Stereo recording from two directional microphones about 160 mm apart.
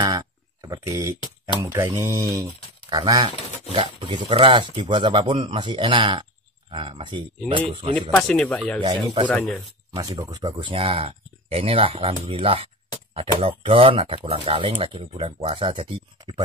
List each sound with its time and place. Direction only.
0.0 s a sound: 25° right (ahead or behind)
1.6 s speech: 25° right (ahead or behind)
7.9 s speech: 5° left (ahead or behind)
10.1 s speech: 20° right (ahead or behind)